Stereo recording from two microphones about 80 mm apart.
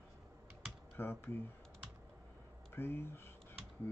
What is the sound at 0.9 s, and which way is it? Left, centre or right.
Speech, left.